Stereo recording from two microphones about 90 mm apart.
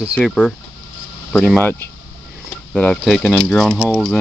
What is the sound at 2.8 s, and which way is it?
Cricket, 10° left (ahead or behind).